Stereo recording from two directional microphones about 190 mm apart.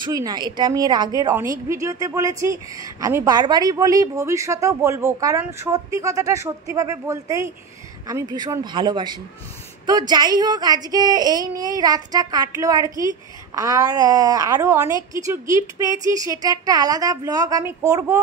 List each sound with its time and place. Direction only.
0.0 s a woman's voice: 20° right (ahead or behind)